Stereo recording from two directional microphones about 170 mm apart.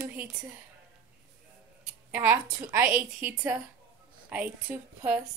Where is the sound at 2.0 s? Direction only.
10° right (ahead or behind).